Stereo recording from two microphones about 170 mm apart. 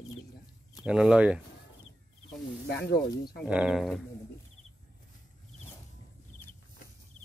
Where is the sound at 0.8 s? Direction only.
5° right (ahead or behind).